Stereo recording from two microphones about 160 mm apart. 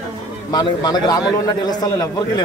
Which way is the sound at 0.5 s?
25° left (ahead or behind).